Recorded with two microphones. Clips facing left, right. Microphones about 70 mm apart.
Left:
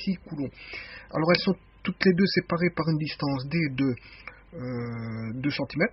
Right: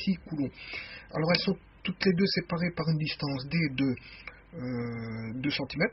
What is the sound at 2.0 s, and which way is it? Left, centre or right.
A man's voice, left.